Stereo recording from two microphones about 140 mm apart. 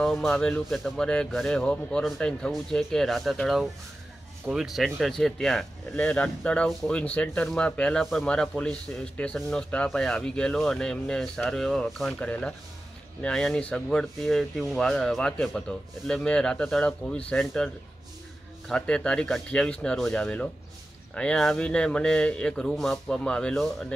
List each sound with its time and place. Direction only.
0.0 s speech: centre (ahead or behind)
18.7 s speech: 5° left (ahead or behind)